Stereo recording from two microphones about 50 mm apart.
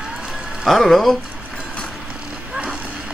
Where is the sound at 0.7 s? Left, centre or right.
Centre.